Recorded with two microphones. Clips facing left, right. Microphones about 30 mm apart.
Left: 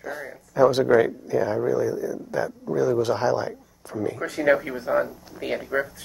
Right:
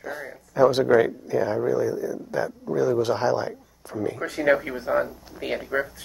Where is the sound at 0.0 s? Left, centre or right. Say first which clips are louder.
Even; centre.